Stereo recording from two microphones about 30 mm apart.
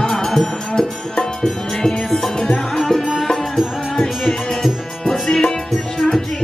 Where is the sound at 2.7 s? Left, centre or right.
Centre.